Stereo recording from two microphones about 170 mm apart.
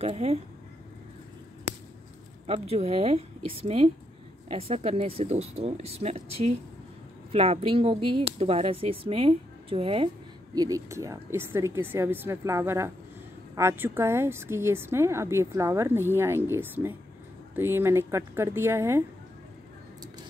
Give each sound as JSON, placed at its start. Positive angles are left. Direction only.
{"t": 0.0, "sound": "speech", "side_deg": -35}
{"t": 2.4, "sound": "speech", "side_deg": -35}
{"t": 10.5, "sound": "a woman's voice", "side_deg": -20}